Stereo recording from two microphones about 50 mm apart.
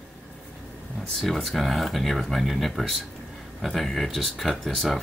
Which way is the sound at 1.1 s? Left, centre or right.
Centre.